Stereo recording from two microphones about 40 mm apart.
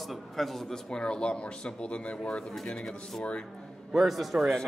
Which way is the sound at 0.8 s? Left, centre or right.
Left.